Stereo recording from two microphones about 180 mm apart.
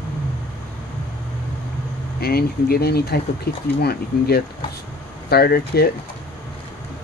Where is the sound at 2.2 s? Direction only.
60° left (ahead or behind).